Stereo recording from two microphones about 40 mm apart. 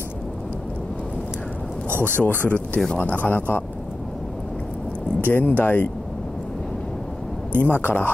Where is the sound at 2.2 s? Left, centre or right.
Left.